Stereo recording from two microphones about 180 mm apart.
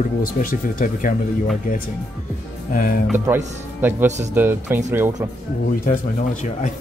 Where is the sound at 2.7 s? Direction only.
50° left (ahead or behind).